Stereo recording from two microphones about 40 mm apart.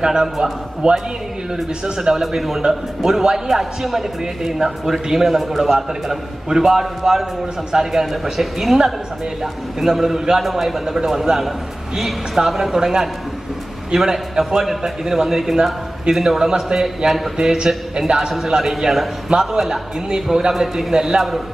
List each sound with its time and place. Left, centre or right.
0.0 s a man's voice: centre
10.4 s a man's voice: centre
17.4 s a man's voice: centre